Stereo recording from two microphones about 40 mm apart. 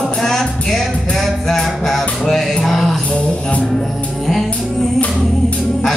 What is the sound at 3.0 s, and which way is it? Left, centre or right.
Music, left.